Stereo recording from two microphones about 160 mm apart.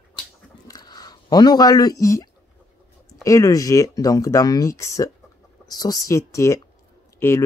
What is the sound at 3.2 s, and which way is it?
Speech, 20° left (ahead or behind).